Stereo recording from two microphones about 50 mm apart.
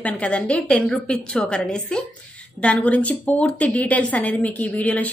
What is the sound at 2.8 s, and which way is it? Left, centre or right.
A woman's voice, left.